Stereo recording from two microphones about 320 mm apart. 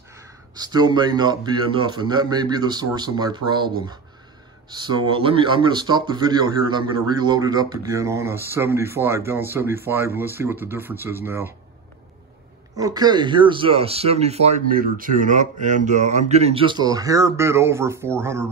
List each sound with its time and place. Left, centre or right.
0.1 s speech: centre
12.7 s speech: centre